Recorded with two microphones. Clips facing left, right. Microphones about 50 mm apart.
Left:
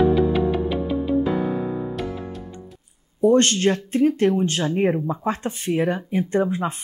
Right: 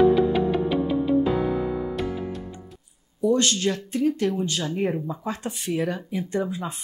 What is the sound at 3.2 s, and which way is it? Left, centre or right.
Speech, left.